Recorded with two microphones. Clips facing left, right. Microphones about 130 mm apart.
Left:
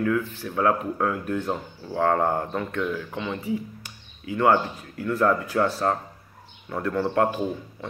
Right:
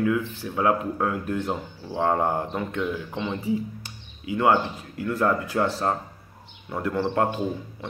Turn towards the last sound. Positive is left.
turn(degrees=-20)  # may be behind; listen again after turning